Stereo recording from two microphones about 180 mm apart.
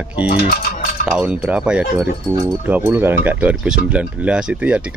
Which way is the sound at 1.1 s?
5° right (ahead or behind).